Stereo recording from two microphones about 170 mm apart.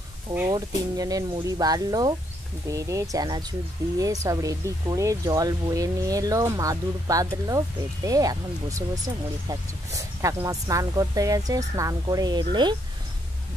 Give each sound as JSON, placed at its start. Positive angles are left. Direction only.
{"t": 0.5, "sound": "speech", "side_deg": -25}